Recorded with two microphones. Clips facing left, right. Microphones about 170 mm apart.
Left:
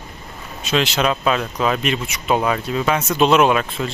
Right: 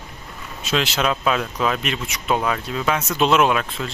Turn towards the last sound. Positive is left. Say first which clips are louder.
# left 3 dB
turn(degrees=0)  # may be behind; listen again after turning